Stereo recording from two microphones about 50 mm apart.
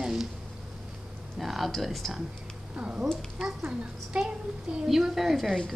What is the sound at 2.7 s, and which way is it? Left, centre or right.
A woman's voice, right.